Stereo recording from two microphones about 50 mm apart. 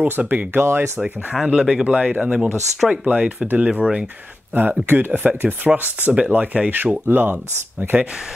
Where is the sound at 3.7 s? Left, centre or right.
Centre.